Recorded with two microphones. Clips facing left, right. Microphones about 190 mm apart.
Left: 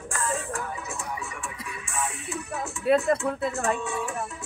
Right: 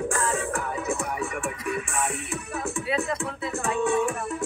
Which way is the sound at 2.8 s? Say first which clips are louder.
Left 9 dB; 55° left (ahead or behind).